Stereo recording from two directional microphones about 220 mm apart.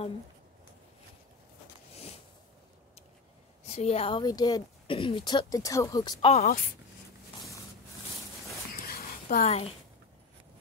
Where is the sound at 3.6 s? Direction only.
30° left (ahead or behind).